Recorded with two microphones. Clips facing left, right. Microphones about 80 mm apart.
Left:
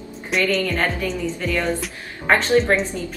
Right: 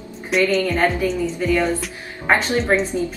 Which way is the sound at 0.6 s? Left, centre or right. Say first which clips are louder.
Right 4 dB; centre.